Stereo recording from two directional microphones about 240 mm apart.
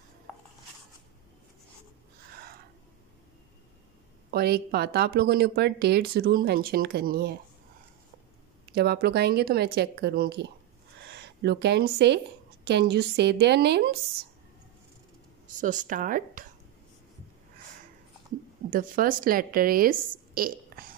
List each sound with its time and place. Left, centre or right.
2.3 s a sound: right
4.3 s speech: right
8.7 s a woman's voice: right
15.6 s speech: right
18.7 s a woman's voice: right